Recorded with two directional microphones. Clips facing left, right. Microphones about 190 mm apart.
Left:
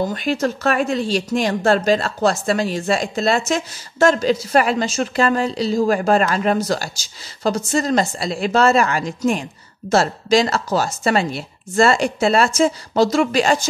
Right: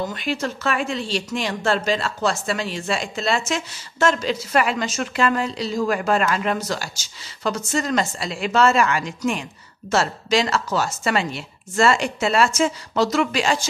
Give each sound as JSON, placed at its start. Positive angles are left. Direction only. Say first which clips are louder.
{"t": 0.0, "sound": "speech", "louder": "left 5 dB", "side_deg": 45}